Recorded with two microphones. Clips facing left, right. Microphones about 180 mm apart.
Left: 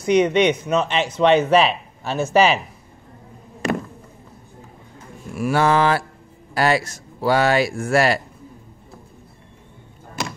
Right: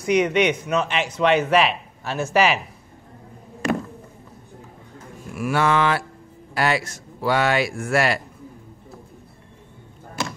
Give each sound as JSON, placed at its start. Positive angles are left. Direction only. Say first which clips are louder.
{"t": 0.0, "sound": "speech", "louder": "left 3 dB", "side_deg": 25}
{"t": 5.3, "sound": "speech", "louder": "left 3 dB", "side_deg": 35}